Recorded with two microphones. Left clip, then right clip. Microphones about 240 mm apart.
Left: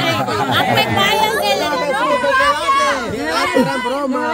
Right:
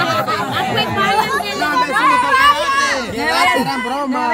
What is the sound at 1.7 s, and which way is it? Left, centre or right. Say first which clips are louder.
Speech: right 3 dB; right.